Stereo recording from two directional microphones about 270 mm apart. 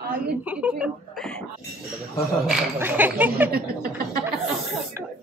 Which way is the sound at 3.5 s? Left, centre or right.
Right.